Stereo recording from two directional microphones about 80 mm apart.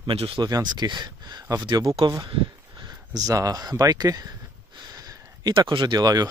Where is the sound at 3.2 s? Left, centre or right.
Right.